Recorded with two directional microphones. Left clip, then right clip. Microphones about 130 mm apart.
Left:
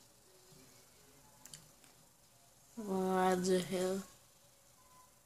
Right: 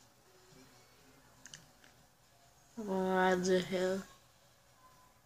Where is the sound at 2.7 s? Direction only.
10° left (ahead or behind).